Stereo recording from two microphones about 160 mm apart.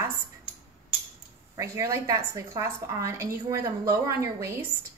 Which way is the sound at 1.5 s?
20° right (ahead or behind).